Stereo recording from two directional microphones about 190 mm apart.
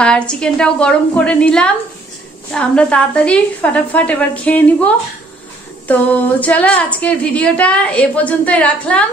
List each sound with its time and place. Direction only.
0.0 s a woman's voice: 5° left (ahead or behind)